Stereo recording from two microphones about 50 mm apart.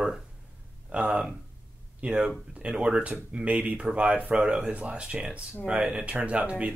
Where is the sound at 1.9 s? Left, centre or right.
Right.